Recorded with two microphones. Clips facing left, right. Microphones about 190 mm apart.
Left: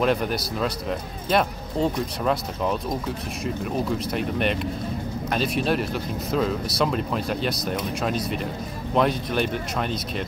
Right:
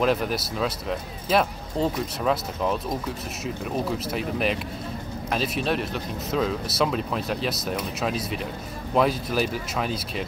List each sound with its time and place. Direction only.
0.0 s speech: centre (ahead or behind)